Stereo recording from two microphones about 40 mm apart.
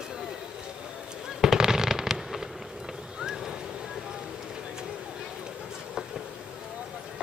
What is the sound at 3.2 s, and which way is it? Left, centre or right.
Vehicle, centre.